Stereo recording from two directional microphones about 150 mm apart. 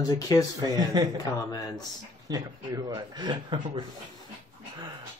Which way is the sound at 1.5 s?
25° left (ahead or behind).